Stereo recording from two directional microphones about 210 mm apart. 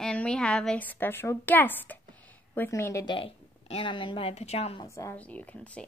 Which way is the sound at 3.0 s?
25° left (ahead or behind).